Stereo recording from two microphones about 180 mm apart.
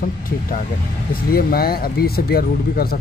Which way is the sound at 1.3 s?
55° left (ahead or behind).